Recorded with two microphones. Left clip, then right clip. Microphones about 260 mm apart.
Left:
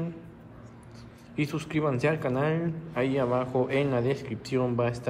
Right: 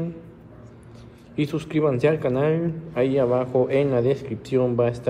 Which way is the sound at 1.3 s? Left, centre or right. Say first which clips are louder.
Right 5 dB; centre.